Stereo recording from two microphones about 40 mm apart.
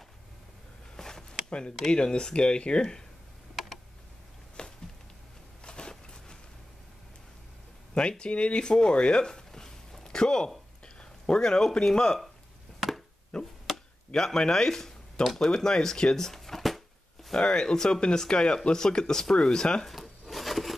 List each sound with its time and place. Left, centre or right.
0.9 s a sound: centre
1.9 s speech: left
3.5 s computer keyboard: centre
4.6 s a sound: left
7.9 s speech: left
10.0 s a sound: centre
11.8 s speech: centre
13.3 s chop: centre
13.7 s chop: centre
14.1 s speech: centre
17.3 s speech: left
19.9 s a sound: centre